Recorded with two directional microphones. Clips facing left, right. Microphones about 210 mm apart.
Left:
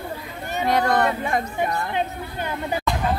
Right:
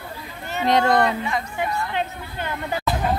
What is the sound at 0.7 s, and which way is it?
Speech, 20° right (ahead or behind).